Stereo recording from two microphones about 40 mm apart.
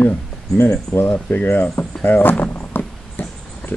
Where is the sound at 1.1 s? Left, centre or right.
Left.